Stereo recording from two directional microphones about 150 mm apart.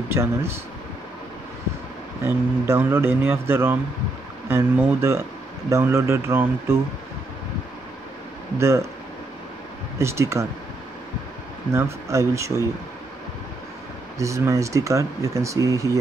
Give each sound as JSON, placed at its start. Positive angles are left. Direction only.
{"t": 0.1, "sound": "a man's voice", "side_deg": -15}
{"t": 2.2, "sound": "a man's voice", "side_deg": -15}
{"t": 8.5, "sound": "speech", "side_deg": -20}
{"t": 9.9, "sound": "speech", "side_deg": -20}
{"t": 11.7, "sound": "speech", "side_deg": -20}
{"t": 14.1, "sound": "speech", "side_deg": -20}